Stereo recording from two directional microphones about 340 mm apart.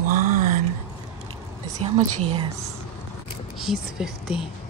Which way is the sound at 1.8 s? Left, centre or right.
Centre.